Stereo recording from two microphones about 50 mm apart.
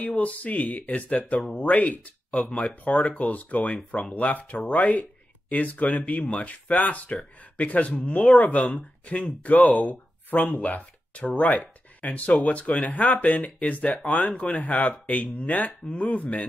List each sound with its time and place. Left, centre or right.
0.0 s speech: left